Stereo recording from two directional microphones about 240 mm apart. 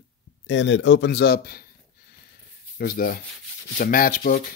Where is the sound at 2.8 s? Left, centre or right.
Left.